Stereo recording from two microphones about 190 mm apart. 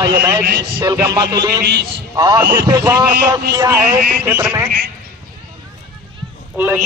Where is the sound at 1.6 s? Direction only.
60° right (ahead or behind).